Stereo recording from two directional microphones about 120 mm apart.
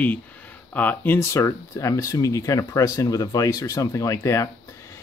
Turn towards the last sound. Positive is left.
turn(degrees=25)  # may be behind; listen again after turning